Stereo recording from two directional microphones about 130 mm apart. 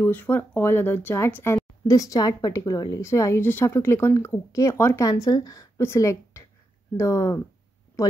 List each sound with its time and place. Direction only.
0.0 s a woman's voice: 15° left (ahead or behind)